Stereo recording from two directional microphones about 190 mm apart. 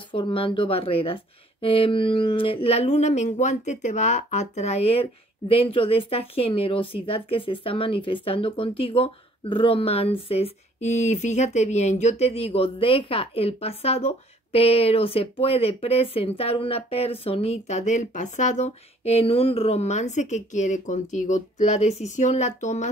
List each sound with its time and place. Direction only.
0.1 s speech: 25° left (ahead or behind)